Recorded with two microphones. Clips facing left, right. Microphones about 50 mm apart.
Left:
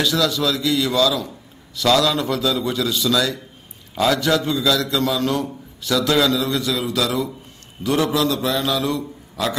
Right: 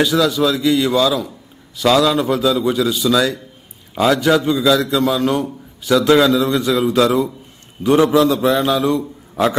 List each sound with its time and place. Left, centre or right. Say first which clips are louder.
0.0 s a man's voice: right 5 dB; centre